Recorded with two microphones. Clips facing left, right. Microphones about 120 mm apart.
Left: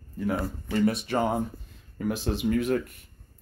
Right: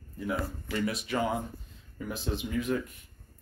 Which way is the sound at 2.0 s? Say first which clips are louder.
Left 6 dB; 65° left (ahead or behind).